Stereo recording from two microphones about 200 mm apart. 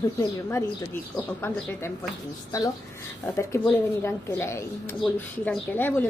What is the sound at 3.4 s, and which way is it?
A woman's voice, 10° left (ahead or behind).